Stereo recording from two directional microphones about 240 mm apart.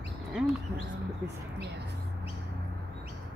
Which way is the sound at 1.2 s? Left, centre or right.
Centre.